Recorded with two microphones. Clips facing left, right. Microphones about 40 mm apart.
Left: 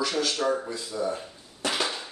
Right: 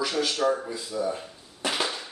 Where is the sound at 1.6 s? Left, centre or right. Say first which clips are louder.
Even; centre.